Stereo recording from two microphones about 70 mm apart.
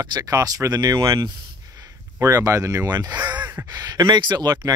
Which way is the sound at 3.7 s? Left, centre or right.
Right.